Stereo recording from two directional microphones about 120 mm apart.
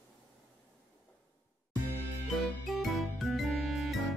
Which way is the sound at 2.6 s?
Centre (ahead or behind).